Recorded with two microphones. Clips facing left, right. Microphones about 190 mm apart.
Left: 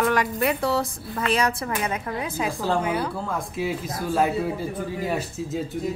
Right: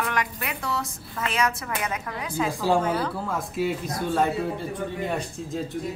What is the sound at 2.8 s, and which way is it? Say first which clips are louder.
Speech: even; 10° left (ahead or behind).